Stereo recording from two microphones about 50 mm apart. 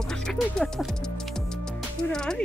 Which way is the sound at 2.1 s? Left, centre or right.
Centre.